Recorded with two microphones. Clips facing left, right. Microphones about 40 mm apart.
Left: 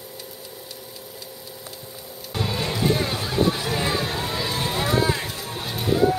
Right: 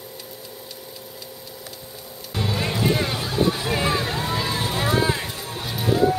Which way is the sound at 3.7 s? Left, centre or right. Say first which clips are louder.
Right 2 dB; centre.